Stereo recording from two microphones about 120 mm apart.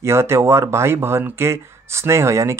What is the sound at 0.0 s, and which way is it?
Speech, 20° right (ahead or behind).